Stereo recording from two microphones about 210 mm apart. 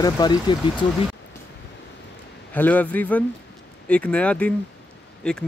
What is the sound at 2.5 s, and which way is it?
Speech, 10° left (ahead or behind).